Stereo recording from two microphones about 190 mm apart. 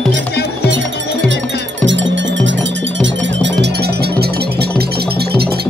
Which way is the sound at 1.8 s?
75° right (ahead or behind).